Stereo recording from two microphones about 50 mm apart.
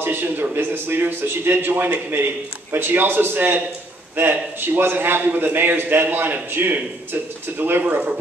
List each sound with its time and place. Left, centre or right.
0.0 s a man's voice: right